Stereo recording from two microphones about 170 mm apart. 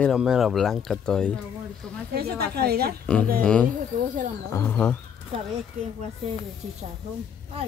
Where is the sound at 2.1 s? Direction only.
65° right (ahead or behind).